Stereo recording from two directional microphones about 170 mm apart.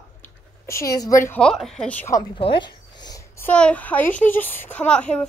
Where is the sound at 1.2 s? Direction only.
10° left (ahead or behind).